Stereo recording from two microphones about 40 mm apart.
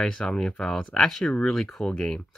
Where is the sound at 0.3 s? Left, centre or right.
Centre.